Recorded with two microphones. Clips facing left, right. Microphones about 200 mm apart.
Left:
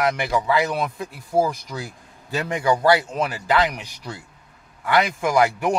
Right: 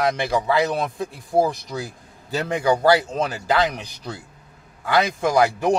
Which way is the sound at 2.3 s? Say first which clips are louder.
Right 1 dB; 35° right (ahead or behind).